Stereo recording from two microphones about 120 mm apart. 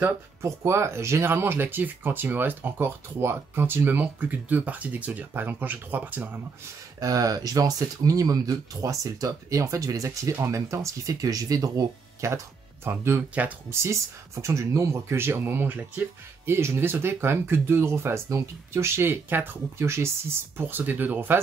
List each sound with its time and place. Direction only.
0.0 s speech: 20° right (ahead or behind)
7.0 s speech: 30° right (ahead or behind)